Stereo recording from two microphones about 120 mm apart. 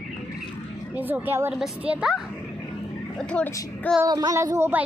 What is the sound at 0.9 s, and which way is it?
Speech, 15° right (ahead or behind).